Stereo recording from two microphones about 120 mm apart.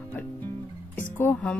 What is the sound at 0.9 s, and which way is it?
Speech, 15° left (ahead or behind).